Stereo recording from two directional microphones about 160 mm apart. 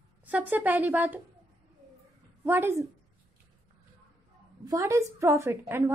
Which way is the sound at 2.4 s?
15° right (ahead or behind).